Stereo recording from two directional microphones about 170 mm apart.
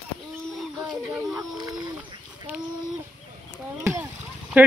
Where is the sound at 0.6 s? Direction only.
5° right (ahead or behind).